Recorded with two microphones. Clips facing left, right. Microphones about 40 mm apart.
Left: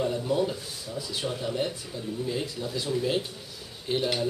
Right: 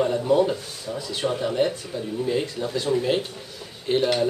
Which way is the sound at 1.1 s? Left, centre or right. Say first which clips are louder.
Right 7 dB; right.